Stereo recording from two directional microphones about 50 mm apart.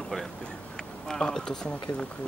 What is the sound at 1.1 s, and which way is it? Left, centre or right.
Speech, centre.